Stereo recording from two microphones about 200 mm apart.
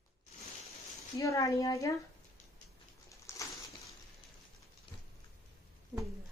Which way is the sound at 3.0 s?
15° left (ahead or behind).